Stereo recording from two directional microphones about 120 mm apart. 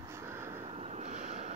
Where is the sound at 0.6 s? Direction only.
60° right (ahead or behind); by 1.5 s 75° right (ahead or behind).